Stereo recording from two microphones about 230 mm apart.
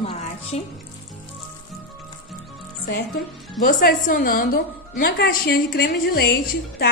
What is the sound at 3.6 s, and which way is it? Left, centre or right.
A woman's voice, left.